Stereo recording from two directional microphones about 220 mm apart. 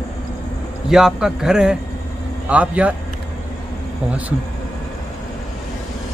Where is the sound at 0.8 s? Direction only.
Centre (ahead or behind).